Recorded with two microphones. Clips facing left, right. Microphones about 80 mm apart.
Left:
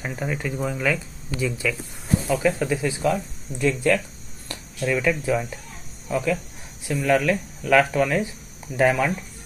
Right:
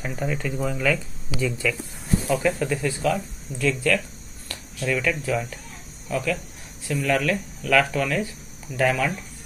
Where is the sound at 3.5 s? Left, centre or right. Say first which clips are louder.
Left 2 dB; left.